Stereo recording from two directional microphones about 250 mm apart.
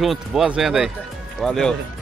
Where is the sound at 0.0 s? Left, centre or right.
Centre.